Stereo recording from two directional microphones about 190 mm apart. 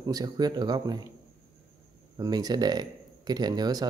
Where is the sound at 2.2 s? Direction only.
20° right (ahead or behind).